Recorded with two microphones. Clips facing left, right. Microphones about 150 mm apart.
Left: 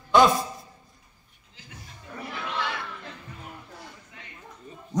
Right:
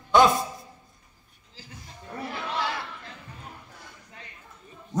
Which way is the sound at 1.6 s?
35° right (ahead or behind).